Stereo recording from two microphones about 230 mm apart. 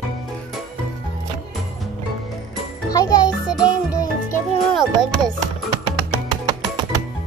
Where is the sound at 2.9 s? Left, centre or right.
Centre.